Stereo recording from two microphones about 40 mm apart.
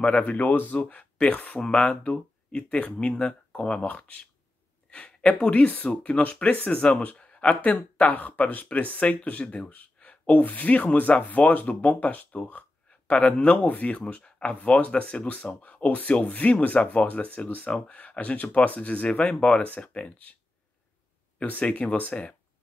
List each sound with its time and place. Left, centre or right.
0.1 s speech: left
1.6 s speech: left
4.9 s a sound: left
5.4 s speech: left
8.1 s speech: left
21.5 s speech: left